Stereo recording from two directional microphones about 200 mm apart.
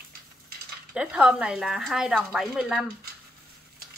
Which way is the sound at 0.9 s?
5° right (ahead or behind).